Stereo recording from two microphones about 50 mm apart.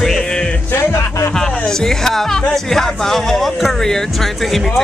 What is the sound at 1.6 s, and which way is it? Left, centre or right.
A man's voice, centre.